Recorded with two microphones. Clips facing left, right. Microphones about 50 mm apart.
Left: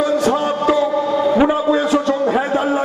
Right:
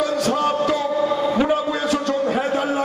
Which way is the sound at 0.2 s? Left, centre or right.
Left.